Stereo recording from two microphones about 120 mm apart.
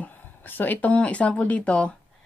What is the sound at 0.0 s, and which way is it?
Speech, 15° left (ahead or behind).